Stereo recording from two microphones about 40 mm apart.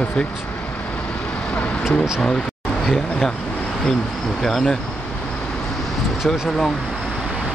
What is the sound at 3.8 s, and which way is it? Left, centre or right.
Speech, centre.